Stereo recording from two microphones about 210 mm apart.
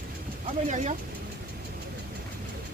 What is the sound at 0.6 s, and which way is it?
Speech, 35° right (ahead or behind).